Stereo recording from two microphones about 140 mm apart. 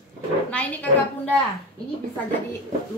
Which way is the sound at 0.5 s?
10° left (ahead or behind).